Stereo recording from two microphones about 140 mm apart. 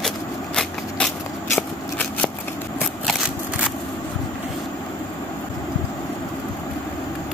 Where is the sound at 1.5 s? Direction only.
5° left (ahead or behind).